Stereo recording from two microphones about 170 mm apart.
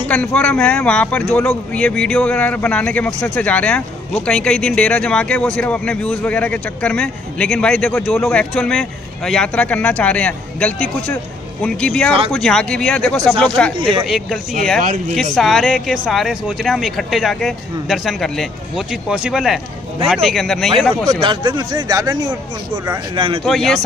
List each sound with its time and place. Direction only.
0.0 s speech: 5° left (ahead or behind)
13.7 s speech: 30° right (ahead or behind)
14.0 s speech: centre (ahead or behind)
14.8 s speech: 50° right (ahead or behind)
15.3 s speech: centre (ahead or behind)
21.1 s speech: 30° right (ahead or behind)
23.4 s speech: centre (ahead or behind)